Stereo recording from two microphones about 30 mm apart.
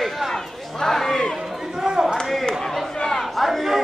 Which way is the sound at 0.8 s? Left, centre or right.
Centre.